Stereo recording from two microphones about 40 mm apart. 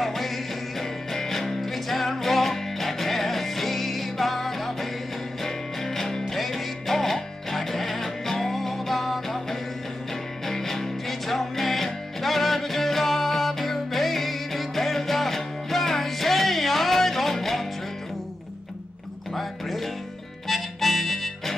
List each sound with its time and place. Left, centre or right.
0.0 s music: centre
19.3 s music: centre
20.4 s harmonica: centre